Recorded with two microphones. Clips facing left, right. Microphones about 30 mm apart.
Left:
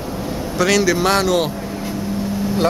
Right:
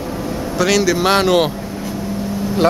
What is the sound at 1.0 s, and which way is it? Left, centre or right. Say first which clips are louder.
Speech: right 2 dB; centre.